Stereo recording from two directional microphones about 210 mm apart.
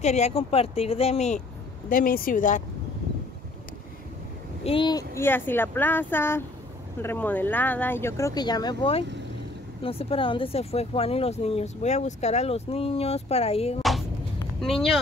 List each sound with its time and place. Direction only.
0.0 s speech: 30° left (ahead or behind)
1.9 s speech: 40° left (ahead or behind)
4.6 s speech: 25° left (ahead or behind)
14.6 s speech: centre (ahead or behind)